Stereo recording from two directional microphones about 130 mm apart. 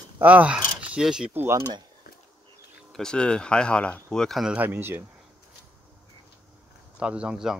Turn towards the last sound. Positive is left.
turn(degrees=-5)  # may be behind; listen again after turning